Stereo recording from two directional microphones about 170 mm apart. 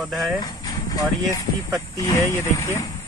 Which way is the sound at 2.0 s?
20° left (ahead or behind).